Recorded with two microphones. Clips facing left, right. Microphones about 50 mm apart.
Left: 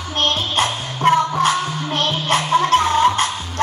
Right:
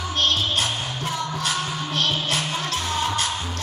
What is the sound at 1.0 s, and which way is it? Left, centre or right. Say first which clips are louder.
Music: left 14 dB; left.